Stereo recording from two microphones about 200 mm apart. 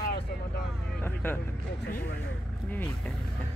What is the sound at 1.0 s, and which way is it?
Speech, 10° left (ahead or behind).